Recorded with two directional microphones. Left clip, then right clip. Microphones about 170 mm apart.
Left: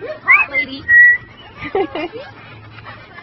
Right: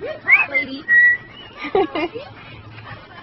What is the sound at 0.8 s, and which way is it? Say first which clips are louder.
Whistling: left 5 dB; centre (ahead or behind).